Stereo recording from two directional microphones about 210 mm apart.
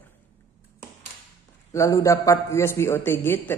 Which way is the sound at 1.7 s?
15° left (ahead or behind).